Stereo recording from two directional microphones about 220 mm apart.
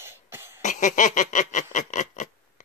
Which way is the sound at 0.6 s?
35° left (ahead or behind).